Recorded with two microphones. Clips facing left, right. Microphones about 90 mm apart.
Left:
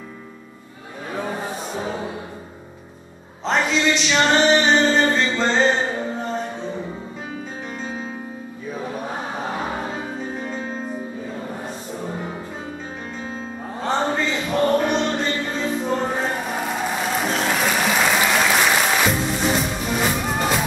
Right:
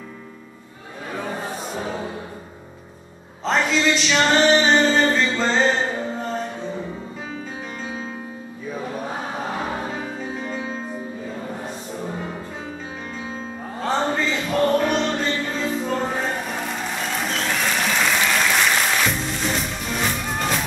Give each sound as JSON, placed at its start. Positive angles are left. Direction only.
{"t": 1.1, "sound": "music", "side_deg": 5}
{"t": 3.4, "sound": "a sound", "side_deg": 0}
{"t": 8.6, "sound": "choir", "side_deg": 0}
{"t": 10.1, "sound": "music", "side_deg": 0}